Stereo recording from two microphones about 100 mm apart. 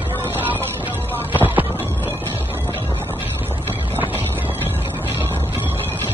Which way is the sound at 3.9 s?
20° right (ahead or behind).